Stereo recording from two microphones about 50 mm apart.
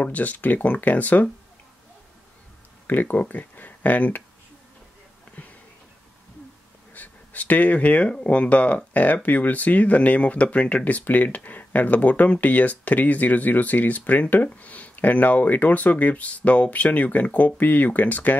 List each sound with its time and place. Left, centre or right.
0.0 s speech: left
2.9 s speech: left
6.9 s speech: left